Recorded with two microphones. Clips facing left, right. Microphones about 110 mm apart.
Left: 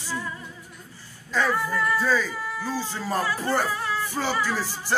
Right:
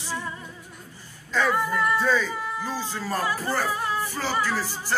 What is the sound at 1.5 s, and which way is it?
Music, 15° right (ahead or behind).